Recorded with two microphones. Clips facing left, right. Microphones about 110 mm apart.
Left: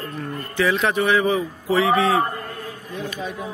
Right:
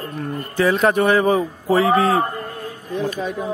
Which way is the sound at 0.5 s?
45° right (ahead or behind).